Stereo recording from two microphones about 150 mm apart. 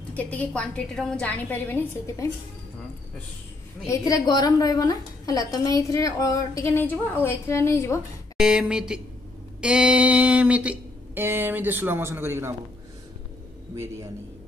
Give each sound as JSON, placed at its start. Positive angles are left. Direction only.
{"t": 0.1, "sound": "a woman's voice", "side_deg": 10}
{"t": 3.8, "sound": "a woman's voice", "side_deg": 20}
{"t": 8.4, "sound": "speech", "side_deg": -5}